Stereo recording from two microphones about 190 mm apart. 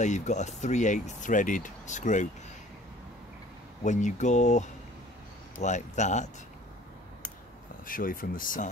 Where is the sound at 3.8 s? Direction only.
40° left (ahead or behind).